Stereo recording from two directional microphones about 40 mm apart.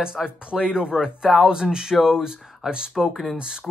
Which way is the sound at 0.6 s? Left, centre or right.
Right.